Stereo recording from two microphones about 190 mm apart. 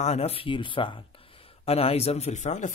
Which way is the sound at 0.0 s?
35° left (ahead or behind).